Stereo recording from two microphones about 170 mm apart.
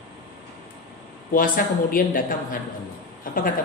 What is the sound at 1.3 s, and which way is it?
A woman's voice, 55° left (ahead or behind).